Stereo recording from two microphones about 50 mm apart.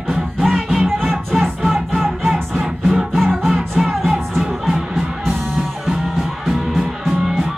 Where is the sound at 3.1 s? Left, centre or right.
Centre.